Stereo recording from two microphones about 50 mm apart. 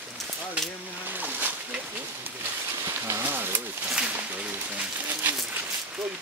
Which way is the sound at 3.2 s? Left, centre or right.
Right.